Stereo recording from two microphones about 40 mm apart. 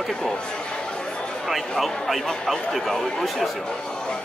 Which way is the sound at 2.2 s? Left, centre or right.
Centre.